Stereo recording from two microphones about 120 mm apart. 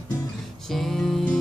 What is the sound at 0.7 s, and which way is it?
Music, centre (ahead or behind).